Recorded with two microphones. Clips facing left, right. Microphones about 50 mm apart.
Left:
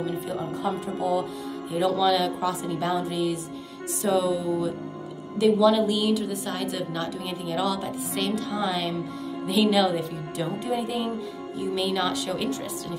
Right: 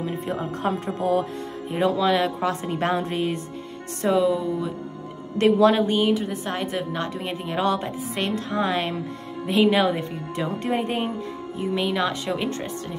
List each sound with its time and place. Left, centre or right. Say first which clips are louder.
0.6 s a woman's voice: right 3 dB; right
1.7 s a woman's voice: right 1 dB; right
2.5 s a woman's voice: right 2 dB; right
4.1 s speech: right 3 dB; right
5.4 s a woman's voice: right 2 dB; right
5.9 s a woman's voice: right 3 dB; right
10.8 s a woman's voice: right 3 dB; right
11.7 s speech: right 2 dB; right